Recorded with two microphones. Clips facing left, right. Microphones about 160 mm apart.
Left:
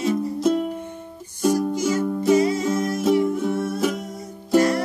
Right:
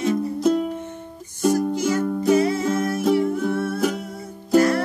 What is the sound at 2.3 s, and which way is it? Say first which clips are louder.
Music: even; 15° left (ahead or behind).